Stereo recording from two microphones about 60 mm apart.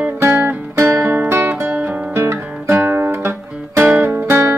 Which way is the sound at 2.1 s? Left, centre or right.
Right.